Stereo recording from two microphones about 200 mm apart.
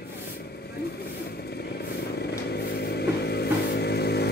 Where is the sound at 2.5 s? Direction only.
55° left (ahead or behind).